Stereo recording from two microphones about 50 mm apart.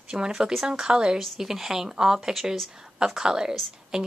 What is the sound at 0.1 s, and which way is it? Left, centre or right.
Speech, centre.